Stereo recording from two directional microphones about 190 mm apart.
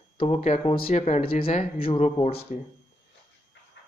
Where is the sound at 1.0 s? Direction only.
35° left (ahead or behind).